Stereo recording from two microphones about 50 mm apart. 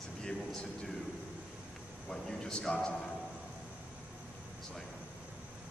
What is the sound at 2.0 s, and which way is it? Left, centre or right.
Speech, centre.